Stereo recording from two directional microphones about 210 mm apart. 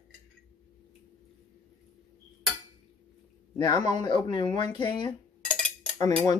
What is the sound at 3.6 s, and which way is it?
Speech, 20° left (ahead or behind).